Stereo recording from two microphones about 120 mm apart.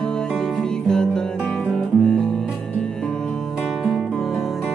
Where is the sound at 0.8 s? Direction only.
5° left (ahead or behind).